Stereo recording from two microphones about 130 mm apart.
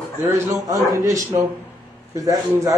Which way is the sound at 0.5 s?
25° right (ahead or behind).